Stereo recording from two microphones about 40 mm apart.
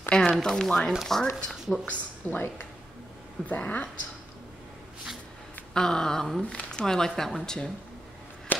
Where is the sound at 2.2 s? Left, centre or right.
Left.